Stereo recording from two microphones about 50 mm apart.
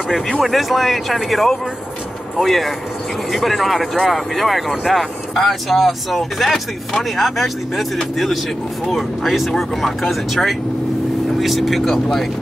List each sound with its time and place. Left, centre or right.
0.3 s speech: centre